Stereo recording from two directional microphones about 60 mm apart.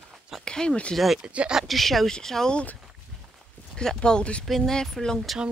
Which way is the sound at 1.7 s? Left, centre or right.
Centre.